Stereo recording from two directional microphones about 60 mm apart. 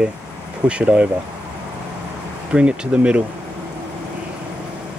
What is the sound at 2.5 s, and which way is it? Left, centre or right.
Speech, centre.